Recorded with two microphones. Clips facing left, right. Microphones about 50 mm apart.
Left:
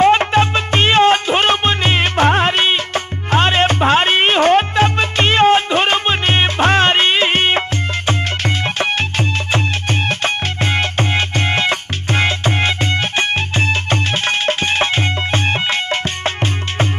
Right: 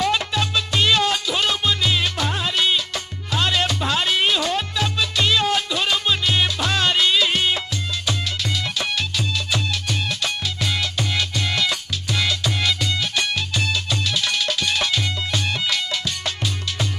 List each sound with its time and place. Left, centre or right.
0.0 s music: left
10.0 s music: left